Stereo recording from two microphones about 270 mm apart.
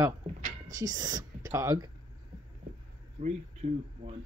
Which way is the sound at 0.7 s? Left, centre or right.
Centre.